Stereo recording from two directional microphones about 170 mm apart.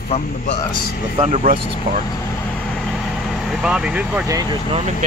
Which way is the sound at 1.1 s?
40° right (ahead or behind).